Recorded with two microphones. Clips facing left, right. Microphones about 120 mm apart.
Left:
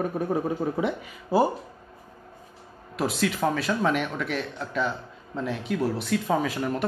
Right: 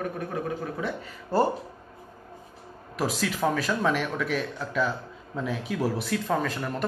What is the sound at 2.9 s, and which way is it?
Speech, centre (ahead or behind).